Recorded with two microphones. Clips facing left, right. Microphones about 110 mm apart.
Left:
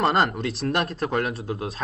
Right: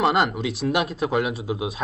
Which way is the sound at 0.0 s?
Centre (ahead or behind).